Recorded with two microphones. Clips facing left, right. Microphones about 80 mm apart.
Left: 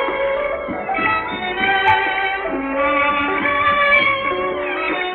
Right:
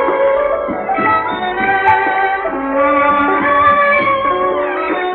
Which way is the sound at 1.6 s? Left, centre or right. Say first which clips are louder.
Right 3 dB; centre.